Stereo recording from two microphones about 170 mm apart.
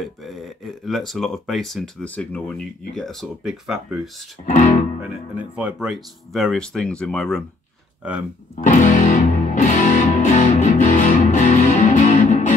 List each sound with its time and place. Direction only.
0.0 s speech: centre (ahead or behind)
4.5 s speech: 45° left (ahead or behind)
5.4 s speech: 5° right (ahead or behind)
8.0 s speech: 5° right (ahead or behind)
8.6 s music: 45° left (ahead or behind)